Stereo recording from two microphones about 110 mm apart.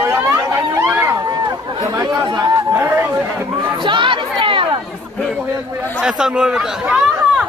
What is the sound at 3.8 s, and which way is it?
Speech, 45° right (ahead or behind).